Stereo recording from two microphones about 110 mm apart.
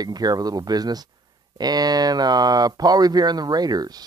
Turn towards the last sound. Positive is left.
turn(degrees=-35)  # may be behind; listen again after turning